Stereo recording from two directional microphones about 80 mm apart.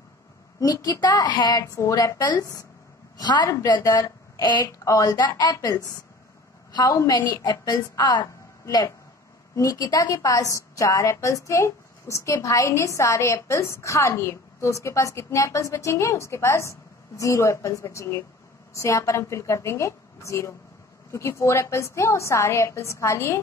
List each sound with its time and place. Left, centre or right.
0.6 s a woman's voice: left
1.6 s a woman's voice: left
3.2 s a woman's voice: left
3.6 s a woman's voice: left
7.1 s a woman's voice: left